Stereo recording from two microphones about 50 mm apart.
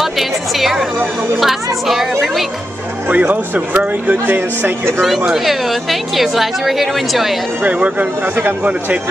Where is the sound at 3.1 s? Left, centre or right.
Right.